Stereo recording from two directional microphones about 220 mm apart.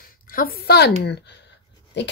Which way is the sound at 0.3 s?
40° left (ahead or behind).